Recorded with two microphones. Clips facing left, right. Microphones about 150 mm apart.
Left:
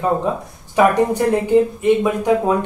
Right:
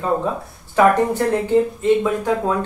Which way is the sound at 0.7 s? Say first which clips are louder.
Left 1 dB; 15° left (ahead or behind).